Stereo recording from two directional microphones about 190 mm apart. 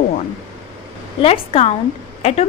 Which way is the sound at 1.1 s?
30° left (ahead or behind).